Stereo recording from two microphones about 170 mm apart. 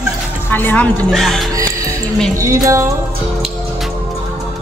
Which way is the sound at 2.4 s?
20° right (ahead or behind).